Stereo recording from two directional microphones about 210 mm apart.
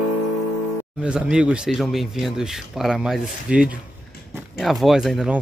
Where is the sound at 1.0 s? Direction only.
5° right (ahead or behind).